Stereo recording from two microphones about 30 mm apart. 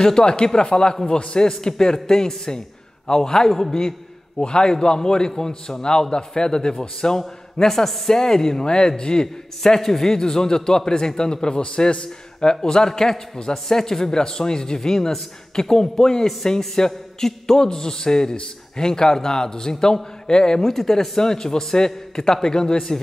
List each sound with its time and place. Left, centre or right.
0.0 s a man's voice: left
4.4 s a man's voice: left
9.8 s a man's voice: centre